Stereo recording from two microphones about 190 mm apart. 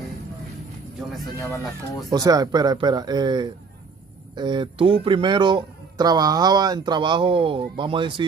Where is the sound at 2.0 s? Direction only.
20° right (ahead or behind).